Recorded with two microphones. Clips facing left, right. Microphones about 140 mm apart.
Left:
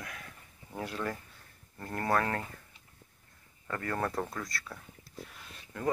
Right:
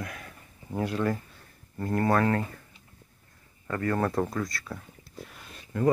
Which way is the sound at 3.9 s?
25° right (ahead or behind).